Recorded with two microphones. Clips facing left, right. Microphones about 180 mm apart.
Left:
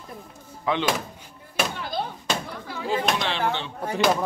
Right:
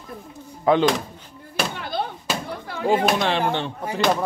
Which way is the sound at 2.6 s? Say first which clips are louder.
Right 8 dB; 55° right (ahead or behind).